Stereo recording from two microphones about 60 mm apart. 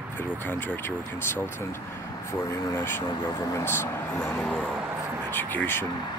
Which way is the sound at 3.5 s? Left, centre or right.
Left.